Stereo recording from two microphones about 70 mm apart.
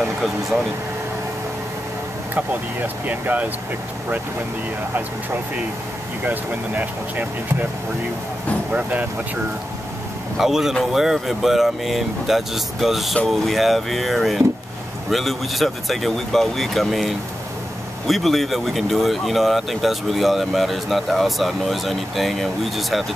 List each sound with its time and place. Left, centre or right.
2.3 s speech: right
6.2 s speech: right
10.3 s speech: centre